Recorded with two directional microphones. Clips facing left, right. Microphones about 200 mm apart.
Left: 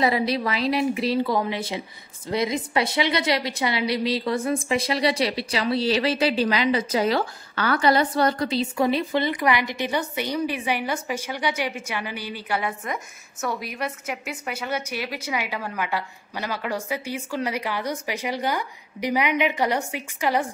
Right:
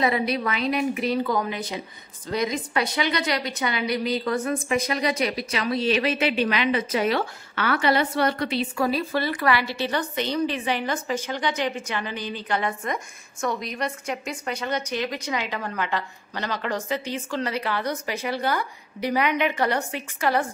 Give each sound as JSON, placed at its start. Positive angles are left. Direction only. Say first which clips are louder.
{"t": 0.0, "sound": "a woman's voice", "louder": "left 1 dB", "side_deg": 30}
{"t": 8.7, "sound": "a woman's voice", "louder": "left 3 dB", "side_deg": 20}